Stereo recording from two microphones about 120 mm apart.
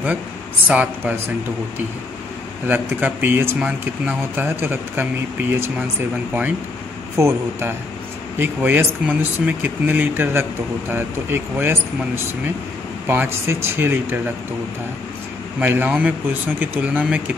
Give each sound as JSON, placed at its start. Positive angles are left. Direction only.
{"t": 0.7, "sound": "speech", "side_deg": -10}
{"t": 2.6, "sound": "speech", "side_deg": -15}
{"t": 7.2, "sound": "speech", "side_deg": -25}
{"t": 13.0, "sound": "speech", "side_deg": -15}
{"t": 15.6, "sound": "speech", "side_deg": -15}